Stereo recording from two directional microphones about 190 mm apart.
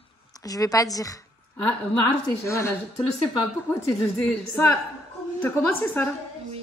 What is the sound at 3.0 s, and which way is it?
Speech, 25° left (ahead or behind).